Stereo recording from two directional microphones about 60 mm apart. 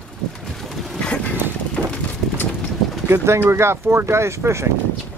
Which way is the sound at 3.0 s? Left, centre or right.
Right.